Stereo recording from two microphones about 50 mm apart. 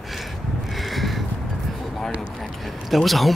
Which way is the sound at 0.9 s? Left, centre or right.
Centre.